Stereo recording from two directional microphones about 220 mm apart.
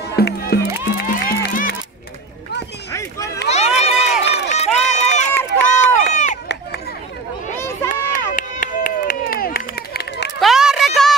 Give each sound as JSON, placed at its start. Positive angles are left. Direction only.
{"t": 0.1, "sound": "music", "side_deg": 50}
{"t": 2.9, "sound": "run", "side_deg": 15}
{"t": 3.4, "sound": "run", "side_deg": 30}
{"t": 7.5, "sound": "a sound", "side_deg": 10}
{"t": 7.9, "sound": "run", "side_deg": 35}
{"t": 10.4, "sound": "a sound", "side_deg": 0}